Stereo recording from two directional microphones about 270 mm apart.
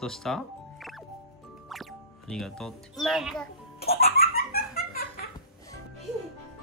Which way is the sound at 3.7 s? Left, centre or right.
Left.